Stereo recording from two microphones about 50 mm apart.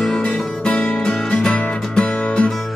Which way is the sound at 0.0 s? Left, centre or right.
Centre.